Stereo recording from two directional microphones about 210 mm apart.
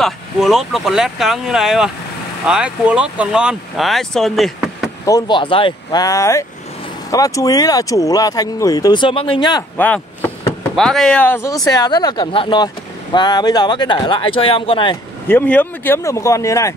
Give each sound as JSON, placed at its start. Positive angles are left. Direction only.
{"t": 0.0, "sound": "speech", "side_deg": 0}
{"t": 5.0, "sound": "speech", "side_deg": 20}
{"t": 9.8, "sound": "speech", "side_deg": 5}
{"t": 15.2, "sound": "speech", "side_deg": 10}